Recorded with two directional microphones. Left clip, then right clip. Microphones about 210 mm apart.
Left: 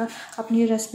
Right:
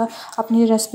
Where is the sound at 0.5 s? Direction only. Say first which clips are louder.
Right 5 dB; 25° right (ahead or behind).